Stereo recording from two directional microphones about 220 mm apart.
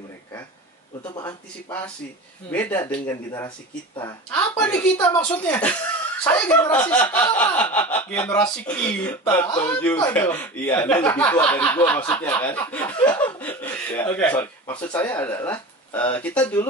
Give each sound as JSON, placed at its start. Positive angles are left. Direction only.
{"t": 1.0, "sound": "speech", "side_deg": 20}
{"t": 4.3, "sound": "speech", "side_deg": 5}
{"t": 13.4, "sound": "chuckle", "side_deg": 10}
{"t": 14.8, "sound": "speech", "side_deg": 5}